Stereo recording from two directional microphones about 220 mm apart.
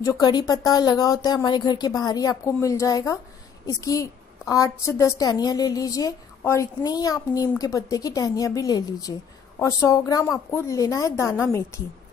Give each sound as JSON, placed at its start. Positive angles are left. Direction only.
{"t": 0.0, "sound": "a woman's voice", "side_deg": 15}